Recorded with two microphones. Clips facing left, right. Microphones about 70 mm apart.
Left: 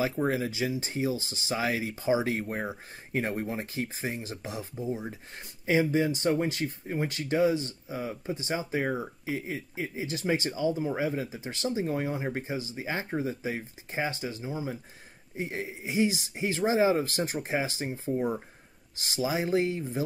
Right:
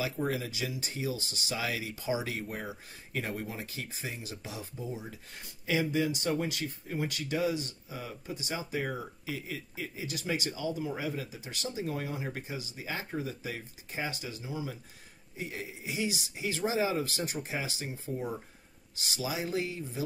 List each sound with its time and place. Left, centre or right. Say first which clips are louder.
0.0 s speech: left 5 dB; left